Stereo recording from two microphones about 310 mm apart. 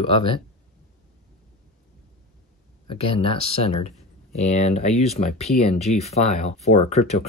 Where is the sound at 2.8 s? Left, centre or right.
Centre.